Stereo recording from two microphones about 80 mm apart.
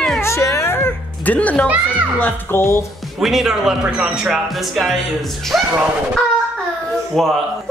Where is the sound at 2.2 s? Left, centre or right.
Left.